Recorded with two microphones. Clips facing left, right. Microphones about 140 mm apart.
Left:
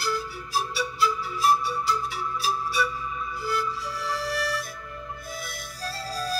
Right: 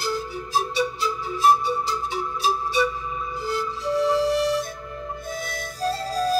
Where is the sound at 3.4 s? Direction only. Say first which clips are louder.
Right 1 dB; 25° right (ahead or behind).